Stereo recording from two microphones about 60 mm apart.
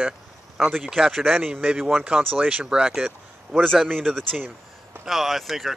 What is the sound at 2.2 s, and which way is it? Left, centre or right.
Speech, right.